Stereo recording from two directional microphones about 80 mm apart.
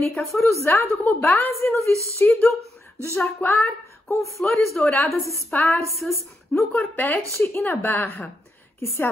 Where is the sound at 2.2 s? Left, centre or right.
Centre.